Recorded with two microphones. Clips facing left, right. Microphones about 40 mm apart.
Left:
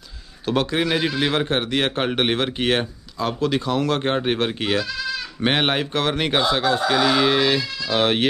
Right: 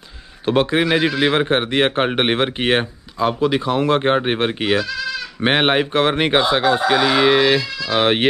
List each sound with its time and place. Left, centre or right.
0.5 s a man's voice: right